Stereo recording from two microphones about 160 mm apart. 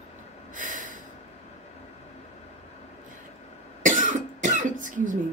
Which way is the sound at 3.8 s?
55° right (ahead or behind).